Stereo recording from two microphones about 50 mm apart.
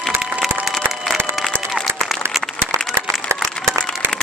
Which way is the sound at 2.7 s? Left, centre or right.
Right.